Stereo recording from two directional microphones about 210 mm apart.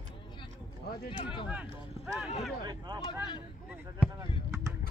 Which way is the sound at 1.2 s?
25° left (ahead or behind).